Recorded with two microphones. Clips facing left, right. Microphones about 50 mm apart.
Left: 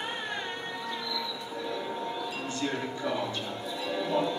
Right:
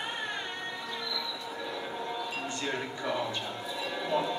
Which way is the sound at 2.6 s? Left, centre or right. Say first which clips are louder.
Left 4 dB; centre.